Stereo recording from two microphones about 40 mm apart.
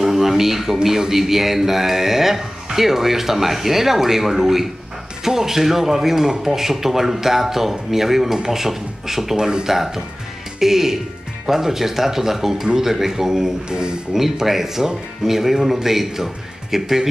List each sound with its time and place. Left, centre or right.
0.0 s a sound: centre
0.8 s speech: centre
9.4 s speech: centre
14.1 s speech: centre